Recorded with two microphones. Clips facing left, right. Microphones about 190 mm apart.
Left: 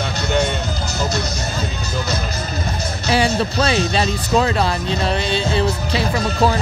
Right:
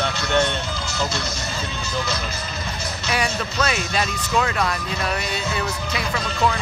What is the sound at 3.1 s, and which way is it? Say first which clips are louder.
Speech: left 7 dB; 30° left (ahead or behind).